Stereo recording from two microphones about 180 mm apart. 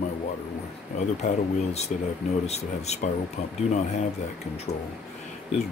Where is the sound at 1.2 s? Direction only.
40° left (ahead or behind).